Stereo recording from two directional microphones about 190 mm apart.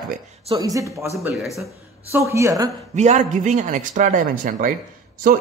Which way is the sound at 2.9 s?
35° right (ahead or behind).